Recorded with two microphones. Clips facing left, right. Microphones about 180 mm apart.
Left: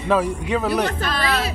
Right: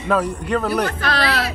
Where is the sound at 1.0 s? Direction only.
75° right (ahead or behind).